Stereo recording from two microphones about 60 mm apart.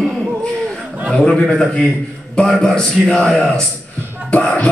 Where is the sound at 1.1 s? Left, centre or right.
Centre.